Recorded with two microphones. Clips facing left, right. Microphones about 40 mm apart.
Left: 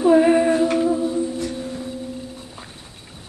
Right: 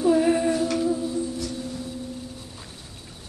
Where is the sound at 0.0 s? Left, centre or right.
Left.